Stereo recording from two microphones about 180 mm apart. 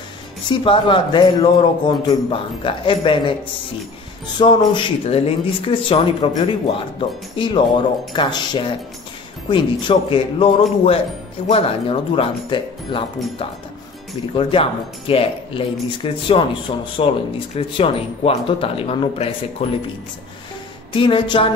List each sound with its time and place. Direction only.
0.5 s a man's voice: 30° left (ahead or behind)
4.4 s a man's voice: 25° left (ahead or behind)
14.3 s a man's voice: 30° left (ahead or behind)
20.9 s a man's voice: 30° left (ahead or behind)